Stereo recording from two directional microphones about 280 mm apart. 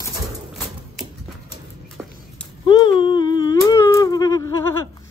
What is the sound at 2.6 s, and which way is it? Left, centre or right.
Humming, centre.